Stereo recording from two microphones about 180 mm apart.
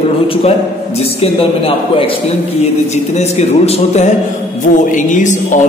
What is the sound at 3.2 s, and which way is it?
Speech, 40° left (ahead or behind).